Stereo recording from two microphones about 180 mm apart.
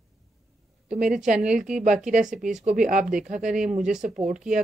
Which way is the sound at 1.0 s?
45° right (ahead or behind).